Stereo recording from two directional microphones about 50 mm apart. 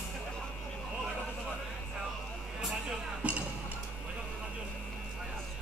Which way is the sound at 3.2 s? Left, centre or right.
Right.